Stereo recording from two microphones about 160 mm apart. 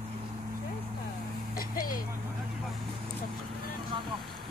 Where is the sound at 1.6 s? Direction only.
65° left (ahead or behind).